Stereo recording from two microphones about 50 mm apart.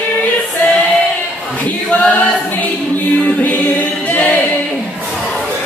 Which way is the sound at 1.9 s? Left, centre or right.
Left.